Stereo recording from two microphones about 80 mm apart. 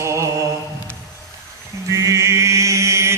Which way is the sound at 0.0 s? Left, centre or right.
Right.